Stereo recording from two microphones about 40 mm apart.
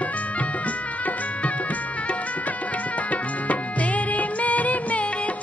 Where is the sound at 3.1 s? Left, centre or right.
Left.